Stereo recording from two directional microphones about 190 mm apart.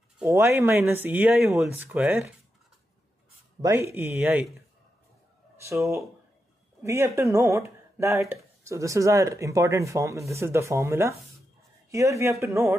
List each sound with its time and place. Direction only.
0.3 s speech: 15° right (ahead or behind)
3.6 s speech: 15° right (ahead or behind)
5.6 s a woman's voice: 15° right (ahead or behind)